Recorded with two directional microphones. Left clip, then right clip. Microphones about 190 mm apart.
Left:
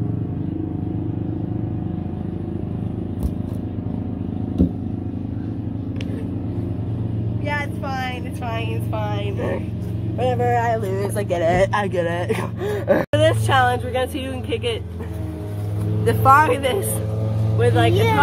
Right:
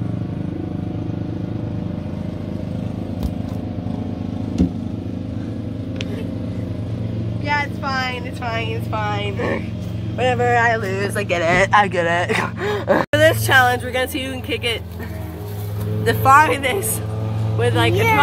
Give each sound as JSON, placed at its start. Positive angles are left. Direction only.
{"t": 7.9, "sound": "vehicle", "side_deg": 15}
{"t": 10.1, "sound": "speech", "side_deg": 15}
{"t": 13.1, "sound": "speech", "side_deg": -15}
{"t": 16.1, "sound": "speech", "side_deg": 0}